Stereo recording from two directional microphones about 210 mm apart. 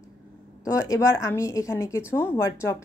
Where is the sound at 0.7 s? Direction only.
15° left (ahead or behind).